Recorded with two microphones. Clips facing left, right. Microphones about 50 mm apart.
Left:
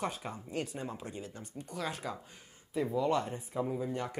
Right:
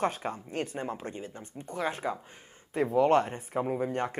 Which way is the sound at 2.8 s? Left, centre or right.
Right.